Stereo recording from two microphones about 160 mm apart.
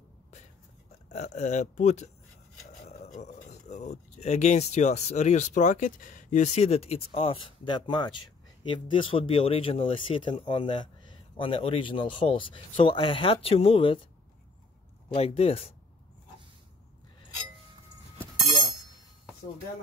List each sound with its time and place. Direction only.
1.0 s speech: 45° left (ahead or behind)
2.9 s a sound: 45° left (ahead or behind)
3.4 s speech: 45° left (ahead or behind)
15.1 s speech: 40° left (ahead or behind)